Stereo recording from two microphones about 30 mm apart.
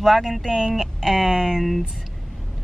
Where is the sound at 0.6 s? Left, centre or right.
Centre.